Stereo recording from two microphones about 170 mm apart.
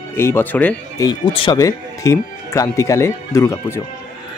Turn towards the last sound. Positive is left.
turn(degrees=15)  # may be behind; listen again after turning